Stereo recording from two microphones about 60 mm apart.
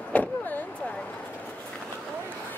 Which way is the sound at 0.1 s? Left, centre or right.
Left.